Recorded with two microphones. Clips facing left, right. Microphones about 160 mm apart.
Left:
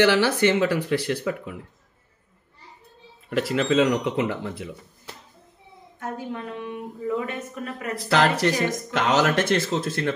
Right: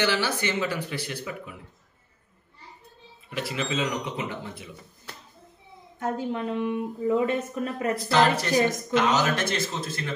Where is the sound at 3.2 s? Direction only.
70° left (ahead or behind).